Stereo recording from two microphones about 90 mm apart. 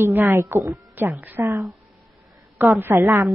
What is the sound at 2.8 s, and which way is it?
Speech, 25° right (ahead or behind).